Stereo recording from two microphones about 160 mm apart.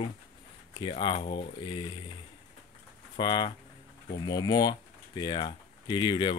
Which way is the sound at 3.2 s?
25° left (ahead or behind).